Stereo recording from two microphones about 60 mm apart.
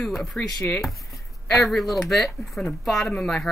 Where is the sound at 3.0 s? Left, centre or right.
Centre.